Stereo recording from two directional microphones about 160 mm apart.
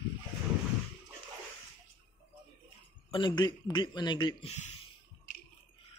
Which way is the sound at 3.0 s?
30° left (ahead or behind).